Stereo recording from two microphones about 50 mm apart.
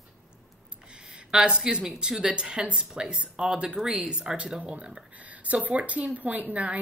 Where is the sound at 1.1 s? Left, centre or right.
Centre.